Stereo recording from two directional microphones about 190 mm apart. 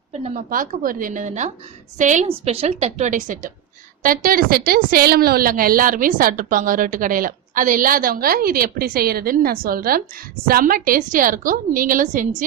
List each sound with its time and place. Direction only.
0.2 s a woman's voice: 45° right (ahead or behind)